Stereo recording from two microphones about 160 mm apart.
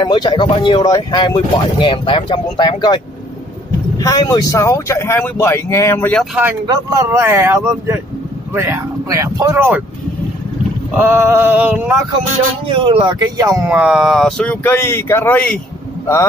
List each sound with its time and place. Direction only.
0.0 s speech: 30° left (ahead or behind)
4.0 s speech: 25° left (ahead or behind)
6.7 s speech: 20° right (ahead or behind)
10.9 s speech: 15° right (ahead or behind)
12.6 s speech: 30° right (ahead or behind)
13.7 s speech: 5° right (ahead or behind)